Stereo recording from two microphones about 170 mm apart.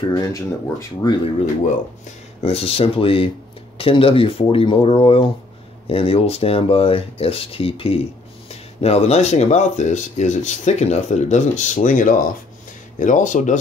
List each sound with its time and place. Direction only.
0.1 s speech: 20° left (ahead or behind)
2.4 s speech: 35° left (ahead or behind)